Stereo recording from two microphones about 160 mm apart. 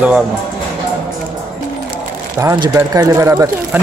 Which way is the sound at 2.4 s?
20° right (ahead or behind).